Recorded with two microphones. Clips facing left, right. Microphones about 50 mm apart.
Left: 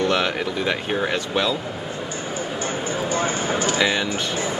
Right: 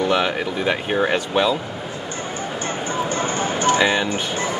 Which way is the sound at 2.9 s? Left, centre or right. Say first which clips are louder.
Right 1 dB; right.